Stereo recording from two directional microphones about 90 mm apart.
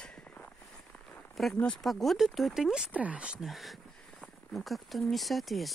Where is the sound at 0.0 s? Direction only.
10° left (ahead or behind).